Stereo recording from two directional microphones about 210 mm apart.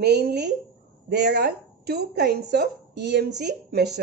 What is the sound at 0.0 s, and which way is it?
A woman's voice, 50° right (ahead or behind).